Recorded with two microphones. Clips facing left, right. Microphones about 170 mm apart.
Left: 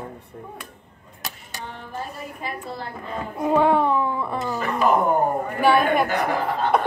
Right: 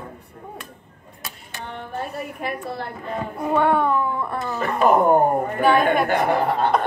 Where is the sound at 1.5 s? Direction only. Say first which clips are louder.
Right 4 dB; 60° right (ahead or behind).